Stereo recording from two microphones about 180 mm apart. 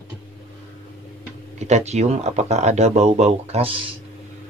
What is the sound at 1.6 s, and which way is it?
A man's voice, 40° right (ahead or behind).